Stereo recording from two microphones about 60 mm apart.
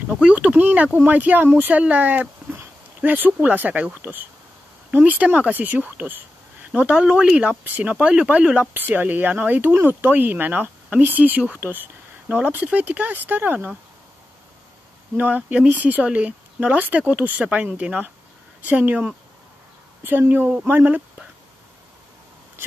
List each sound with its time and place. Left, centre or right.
0.3 s speech: right
6.9 s speech: centre
8.8 s speech: right
15.1 s speech: right